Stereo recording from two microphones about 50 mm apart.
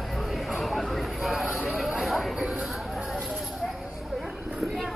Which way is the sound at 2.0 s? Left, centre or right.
Centre.